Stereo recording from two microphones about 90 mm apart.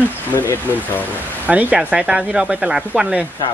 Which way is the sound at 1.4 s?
20° right (ahead or behind).